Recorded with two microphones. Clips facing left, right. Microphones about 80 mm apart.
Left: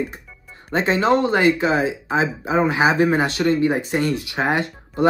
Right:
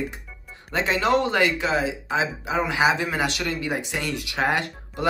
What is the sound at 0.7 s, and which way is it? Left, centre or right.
Speech, left.